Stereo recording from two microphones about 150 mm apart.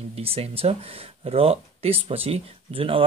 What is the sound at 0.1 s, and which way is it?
Speech, 40° right (ahead or behind).